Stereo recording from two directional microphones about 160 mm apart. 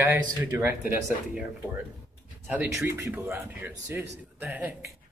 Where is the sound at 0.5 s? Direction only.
15° right (ahead or behind).